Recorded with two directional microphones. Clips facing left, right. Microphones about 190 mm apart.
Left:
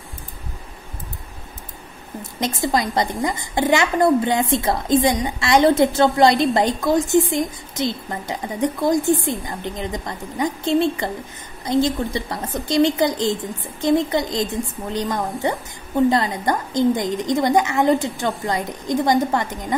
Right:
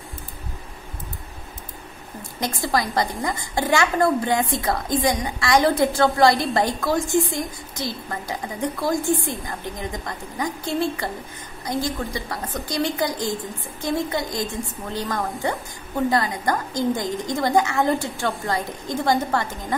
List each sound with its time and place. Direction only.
2.4 s a woman's voice: 20° left (ahead or behind)